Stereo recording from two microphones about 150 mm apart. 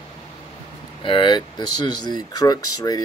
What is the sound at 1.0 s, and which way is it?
Speech, 35° left (ahead or behind).